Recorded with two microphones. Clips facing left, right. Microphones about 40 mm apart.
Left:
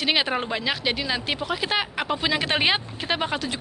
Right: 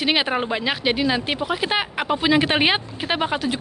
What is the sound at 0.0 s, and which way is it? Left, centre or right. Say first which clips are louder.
Speech: right 3 dB; centre.